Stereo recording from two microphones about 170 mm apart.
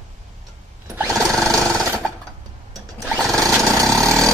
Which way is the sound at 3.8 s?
15° right (ahead or behind).